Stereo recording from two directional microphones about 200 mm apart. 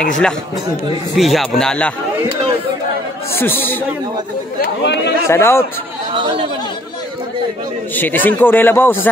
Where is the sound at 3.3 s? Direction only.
10° left (ahead or behind).